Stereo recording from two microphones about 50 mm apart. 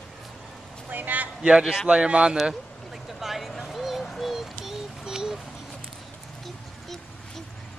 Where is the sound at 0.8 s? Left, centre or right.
Right.